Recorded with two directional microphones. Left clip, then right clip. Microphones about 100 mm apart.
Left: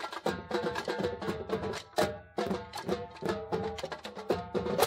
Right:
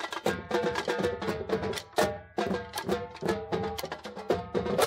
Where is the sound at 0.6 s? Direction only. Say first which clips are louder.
Right 4 dB; 20° right (ahead or behind).